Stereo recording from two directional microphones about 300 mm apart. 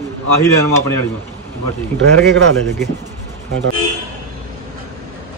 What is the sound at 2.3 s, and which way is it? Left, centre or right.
Speech, right.